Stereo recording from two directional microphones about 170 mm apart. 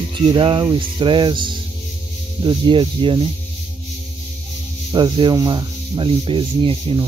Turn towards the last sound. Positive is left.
turn(degrees=-30)  # may be behind; listen again after turning